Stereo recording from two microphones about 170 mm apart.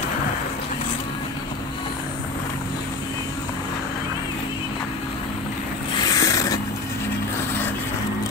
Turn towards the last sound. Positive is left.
turn(degrees=20)  # may be behind; listen again after turning